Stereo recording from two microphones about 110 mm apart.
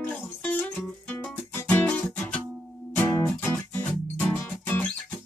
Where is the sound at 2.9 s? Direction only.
15° left (ahead or behind).